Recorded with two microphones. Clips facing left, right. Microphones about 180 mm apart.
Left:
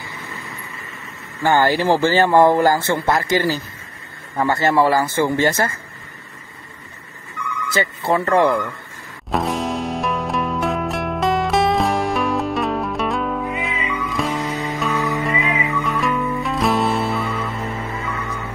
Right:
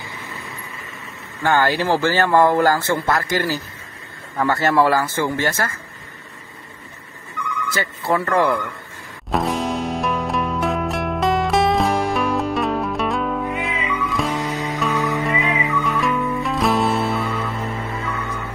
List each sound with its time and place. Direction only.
1.4 s speech: 15° left (ahead or behind)
7.7 s speech: 20° left (ahead or behind)
9.3 s music: centre (ahead or behind)